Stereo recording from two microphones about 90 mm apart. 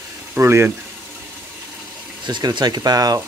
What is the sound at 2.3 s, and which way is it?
Speech, 55° right (ahead or behind).